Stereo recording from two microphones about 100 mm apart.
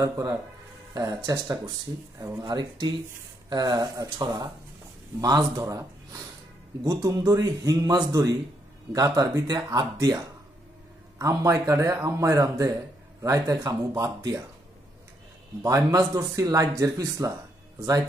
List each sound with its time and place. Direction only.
0.0 s a man's voice: 30° right (ahead or behind)
15.6 s a man's voice: 35° right (ahead or behind)